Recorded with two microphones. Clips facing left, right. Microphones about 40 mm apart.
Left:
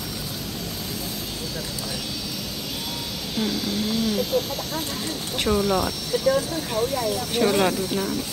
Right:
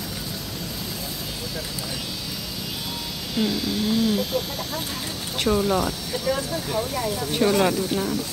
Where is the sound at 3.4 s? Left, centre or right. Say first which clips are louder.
Right 2 dB; centre.